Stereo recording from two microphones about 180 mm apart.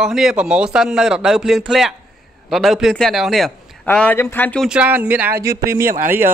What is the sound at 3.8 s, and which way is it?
Speech, 10° left (ahead or behind).